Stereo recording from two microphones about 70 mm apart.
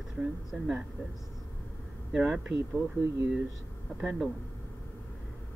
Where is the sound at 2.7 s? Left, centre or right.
Right.